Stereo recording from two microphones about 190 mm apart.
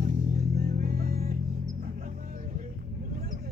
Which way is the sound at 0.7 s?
55° right (ahead or behind).